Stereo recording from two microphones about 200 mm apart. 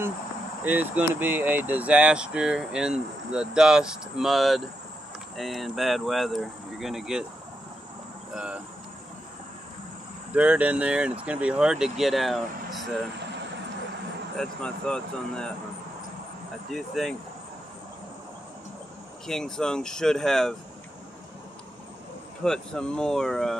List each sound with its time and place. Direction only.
0.7 s speech: 10° right (ahead or behind)
8.4 s speech: 5° right (ahead or behind)
10.3 s speech: 5° right (ahead or behind)
14.3 s speech: 5° left (ahead or behind)
16.7 s speech: centre (ahead or behind)
19.2 s speech: centre (ahead or behind)
22.4 s speech: 5° left (ahead or behind)